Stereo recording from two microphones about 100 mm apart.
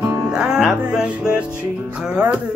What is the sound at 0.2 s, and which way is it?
Music, 5° right (ahead or behind).